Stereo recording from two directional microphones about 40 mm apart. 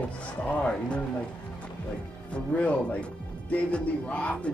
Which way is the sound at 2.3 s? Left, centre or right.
Left.